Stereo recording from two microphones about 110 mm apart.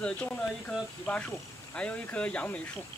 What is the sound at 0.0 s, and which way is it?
Speech, 10° left (ahead or behind).